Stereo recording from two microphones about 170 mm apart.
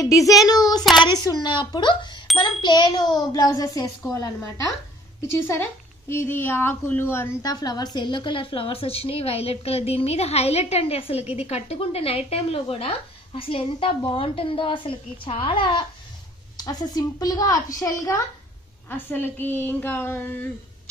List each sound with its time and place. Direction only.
0.0 s a child's voice: 20° left (ahead or behind)
5.5 s a woman's voice: 15° left (ahead or behind)